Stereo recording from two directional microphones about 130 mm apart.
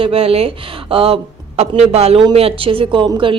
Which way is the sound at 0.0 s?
50° right (ahead or behind).